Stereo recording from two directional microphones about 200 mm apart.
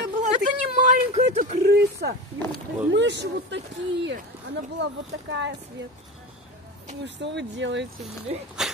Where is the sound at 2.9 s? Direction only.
60° right (ahead or behind).